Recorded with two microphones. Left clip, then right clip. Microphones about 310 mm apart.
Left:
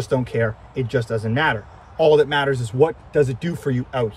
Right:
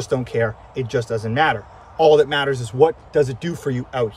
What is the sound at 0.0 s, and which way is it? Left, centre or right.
Speech, centre.